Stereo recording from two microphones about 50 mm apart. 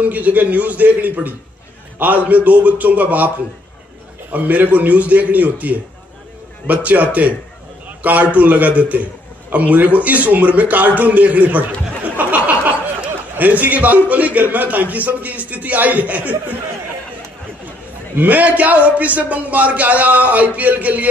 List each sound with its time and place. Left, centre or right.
0.0 s a man's voice: right
4.3 s a man's voice: right
12.0 s a sound: right
13.5 s a man's voice: right
18.1 s a man's voice: right